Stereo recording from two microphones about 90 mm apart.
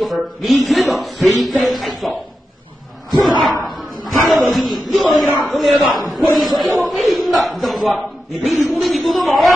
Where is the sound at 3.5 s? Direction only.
Centre (ahead or behind).